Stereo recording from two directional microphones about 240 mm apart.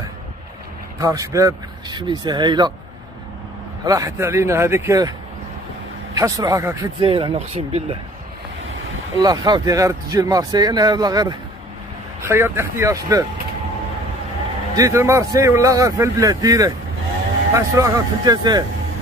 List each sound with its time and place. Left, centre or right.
0.9 s speech: centre
3.8 s speech: centre
6.1 s speech: centre
9.2 s speech: centre
14.8 s speech: centre